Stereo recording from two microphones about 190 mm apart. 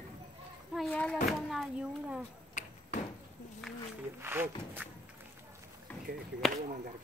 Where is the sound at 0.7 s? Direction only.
5° left (ahead or behind).